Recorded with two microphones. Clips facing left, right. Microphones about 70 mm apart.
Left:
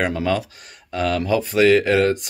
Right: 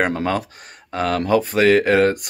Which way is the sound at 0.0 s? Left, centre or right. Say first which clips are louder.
Right 1 dB; right.